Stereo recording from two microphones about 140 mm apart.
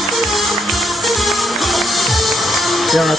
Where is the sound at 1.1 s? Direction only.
Centre (ahead or behind).